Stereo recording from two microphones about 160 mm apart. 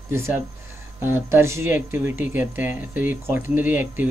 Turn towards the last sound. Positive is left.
turn(degrees=-10)  # may be behind; listen again after turning